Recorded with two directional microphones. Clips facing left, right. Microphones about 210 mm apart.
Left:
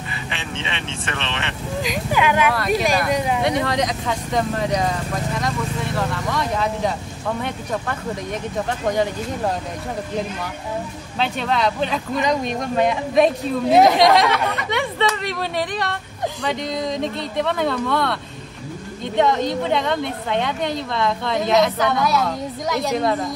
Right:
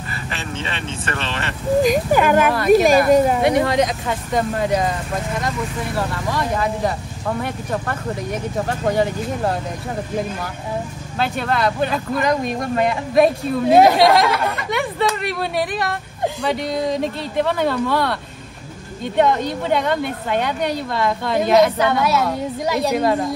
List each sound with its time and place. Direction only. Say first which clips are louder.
0.7 s speech: right 2 dB; centre (ahead or behind)
1.8 s speech: right 6 dB; 45° right (ahead or behind)
3.7 s speech: right 3 dB; 5° right (ahead or behind)
5.9 s speech: right 1 dB; 5° right (ahead or behind)
11.1 s speech: right 1 dB; 5° right (ahead or behind)
19.1 s speech: right 1 dB; 5° right (ahead or behind)